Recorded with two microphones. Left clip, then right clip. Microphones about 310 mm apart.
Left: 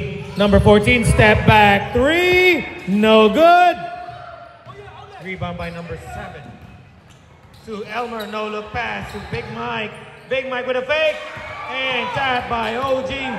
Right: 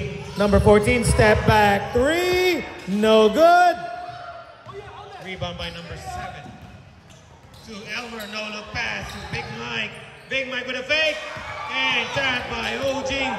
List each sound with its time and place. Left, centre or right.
0.4 s speech: centre
7.7 s a man's voice: centre